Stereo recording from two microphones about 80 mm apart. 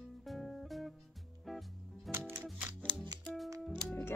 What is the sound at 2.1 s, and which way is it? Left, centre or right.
Music, centre.